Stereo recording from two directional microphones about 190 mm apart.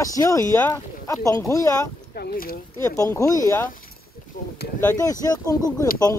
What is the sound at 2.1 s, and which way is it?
Speech, 55° left (ahead or behind).